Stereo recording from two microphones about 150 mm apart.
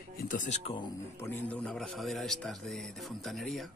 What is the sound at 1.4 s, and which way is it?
Speech, 5° left (ahead or behind).